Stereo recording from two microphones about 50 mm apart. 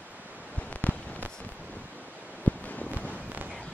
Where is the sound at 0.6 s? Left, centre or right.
Left.